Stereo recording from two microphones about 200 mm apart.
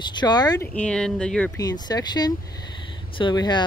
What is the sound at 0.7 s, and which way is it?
Speech, 5° left (ahead or behind).